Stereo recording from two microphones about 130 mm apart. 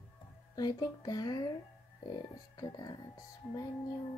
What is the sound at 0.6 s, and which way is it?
Speech, 30° left (ahead or behind).